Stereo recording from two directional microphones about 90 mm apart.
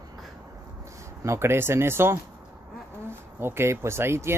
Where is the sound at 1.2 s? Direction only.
30° right (ahead or behind).